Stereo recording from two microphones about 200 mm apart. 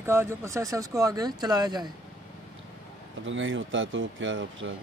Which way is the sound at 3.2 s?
70° right (ahead or behind).